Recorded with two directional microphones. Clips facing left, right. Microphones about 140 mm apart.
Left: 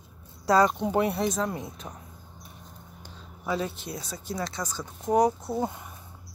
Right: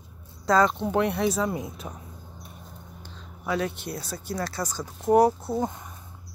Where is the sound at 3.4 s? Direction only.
Centre (ahead or behind).